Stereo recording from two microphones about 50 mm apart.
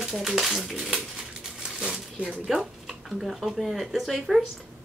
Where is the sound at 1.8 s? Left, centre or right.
Centre.